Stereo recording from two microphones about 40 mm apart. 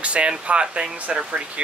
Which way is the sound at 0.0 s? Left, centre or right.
Right.